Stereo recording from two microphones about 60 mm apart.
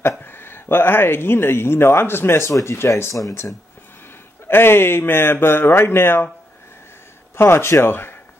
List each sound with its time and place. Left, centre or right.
0.2 s speech: left
2.9 s speech: left
4.5 s speech: left
7.3 s speech: left